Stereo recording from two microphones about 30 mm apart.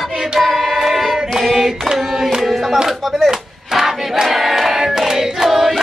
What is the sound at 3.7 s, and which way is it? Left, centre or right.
Crowd, centre.